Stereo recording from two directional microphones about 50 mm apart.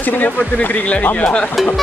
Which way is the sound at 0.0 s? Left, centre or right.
Left.